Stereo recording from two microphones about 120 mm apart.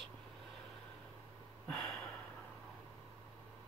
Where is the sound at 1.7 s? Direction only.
5° left (ahead or behind).